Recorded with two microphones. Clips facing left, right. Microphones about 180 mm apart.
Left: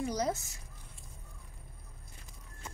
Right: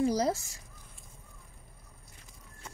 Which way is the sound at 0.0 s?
30° right (ahead or behind).